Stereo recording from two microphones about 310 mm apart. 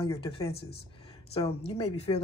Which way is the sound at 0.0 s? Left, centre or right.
Centre.